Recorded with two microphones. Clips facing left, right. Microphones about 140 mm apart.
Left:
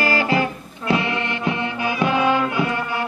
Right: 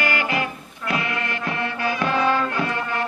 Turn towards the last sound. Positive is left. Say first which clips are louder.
# left 2 dB
turn(degrees=10)  # may be behind; listen again after turning